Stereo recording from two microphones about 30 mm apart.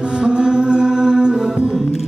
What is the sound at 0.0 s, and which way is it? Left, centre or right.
Music, right.